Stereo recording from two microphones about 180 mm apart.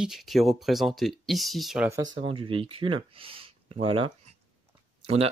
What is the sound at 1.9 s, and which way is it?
Speech, 20° right (ahead or behind).